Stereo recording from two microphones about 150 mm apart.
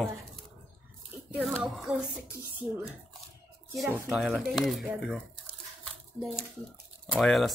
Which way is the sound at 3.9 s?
5° right (ahead or behind).